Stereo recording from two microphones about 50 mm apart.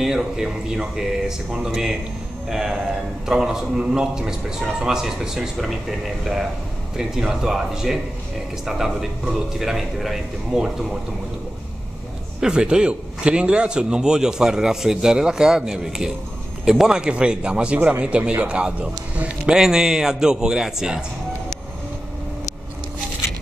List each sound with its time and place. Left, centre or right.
0.0 s a man's voice: centre
12.4 s a man's voice: centre
17.7 s a man's voice: right
19.5 s a man's voice: centre